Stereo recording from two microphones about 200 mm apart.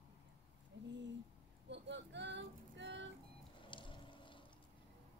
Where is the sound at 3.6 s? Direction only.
25° left (ahead or behind).